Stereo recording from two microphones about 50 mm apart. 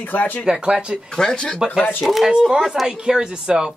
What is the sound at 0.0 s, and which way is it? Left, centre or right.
Speech, left.